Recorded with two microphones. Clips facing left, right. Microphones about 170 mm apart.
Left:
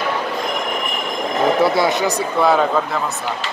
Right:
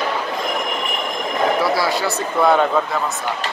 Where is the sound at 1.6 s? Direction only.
20° left (ahead or behind).